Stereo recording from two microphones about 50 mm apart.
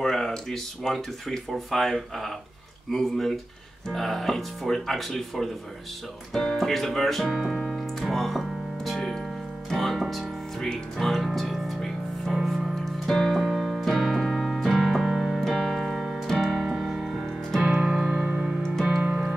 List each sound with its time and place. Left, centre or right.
0.0 s speech: centre
6.3 s piano: centre
9.7 s music: centre
10.7 s speech: centre
11.3 s music: centre
13.4 s keyboard: centre
15.4 s keyboard: centre
15.8 s keyboard: centre
16.3 s piano: centre
16.7 s music: centre
18.9 s music: right